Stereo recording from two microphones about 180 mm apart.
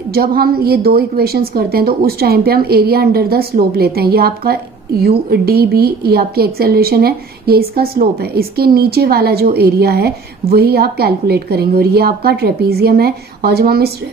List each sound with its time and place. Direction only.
0.1 s a woman's voice: 55° right (ahead or behind)